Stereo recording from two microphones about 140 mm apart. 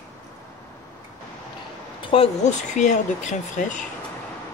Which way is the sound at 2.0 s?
40° left (ahead or behind).